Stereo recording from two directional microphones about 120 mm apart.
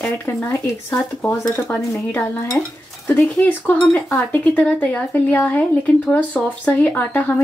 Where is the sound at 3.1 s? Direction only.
15° left (ahead or behind).